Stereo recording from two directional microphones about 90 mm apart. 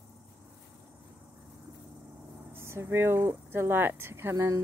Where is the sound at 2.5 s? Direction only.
25° right (ahead or behind).